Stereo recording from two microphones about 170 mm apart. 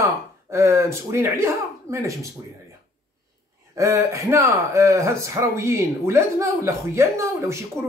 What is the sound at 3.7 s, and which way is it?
Speech, 20° right (ahead or behind).